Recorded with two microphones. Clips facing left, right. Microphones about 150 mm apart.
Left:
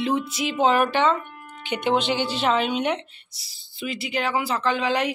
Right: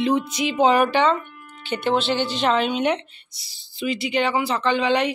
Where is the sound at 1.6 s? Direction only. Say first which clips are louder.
Right 1 dB; 15° left (ahead or behind).